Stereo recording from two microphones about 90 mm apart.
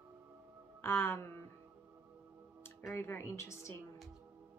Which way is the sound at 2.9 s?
25° left (ahead or behind).